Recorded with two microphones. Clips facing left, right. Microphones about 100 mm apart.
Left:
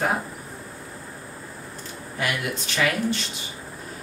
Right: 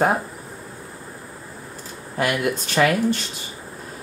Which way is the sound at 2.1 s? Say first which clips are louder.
Right 6 dB; 45° right (ahead or behind).